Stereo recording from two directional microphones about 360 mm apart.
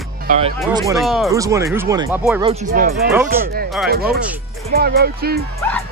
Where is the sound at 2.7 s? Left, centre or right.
Right.